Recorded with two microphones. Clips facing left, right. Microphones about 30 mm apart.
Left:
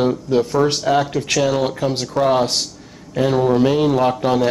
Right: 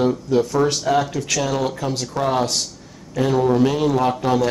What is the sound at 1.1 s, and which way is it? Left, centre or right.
Speech, left.